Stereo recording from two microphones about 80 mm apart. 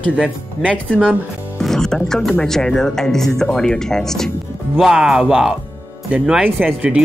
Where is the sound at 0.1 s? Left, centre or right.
Centre.